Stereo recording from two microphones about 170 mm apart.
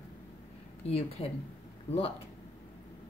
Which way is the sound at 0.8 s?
35° left (ahead or behind).